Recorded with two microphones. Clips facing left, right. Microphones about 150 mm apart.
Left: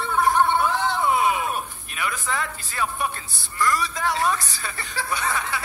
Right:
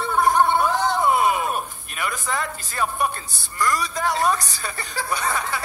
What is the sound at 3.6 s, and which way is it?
Chuckle, 40° right (ahead or behind).